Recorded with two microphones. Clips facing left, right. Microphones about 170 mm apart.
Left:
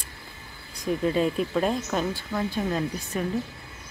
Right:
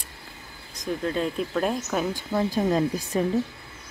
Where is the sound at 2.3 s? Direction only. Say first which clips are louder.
Right 4 dB; 35° right (ahead or behind).